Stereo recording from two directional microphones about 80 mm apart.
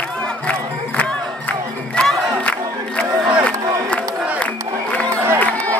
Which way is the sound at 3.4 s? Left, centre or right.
Centre.